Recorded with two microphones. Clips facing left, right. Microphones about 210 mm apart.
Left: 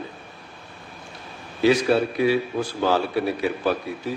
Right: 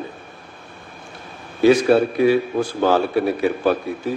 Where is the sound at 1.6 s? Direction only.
50° right (ahead or behind).